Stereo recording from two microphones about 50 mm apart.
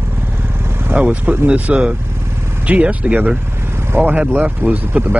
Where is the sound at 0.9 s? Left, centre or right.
Right.